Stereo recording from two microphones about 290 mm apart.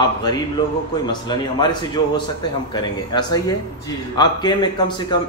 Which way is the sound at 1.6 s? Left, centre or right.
Centre.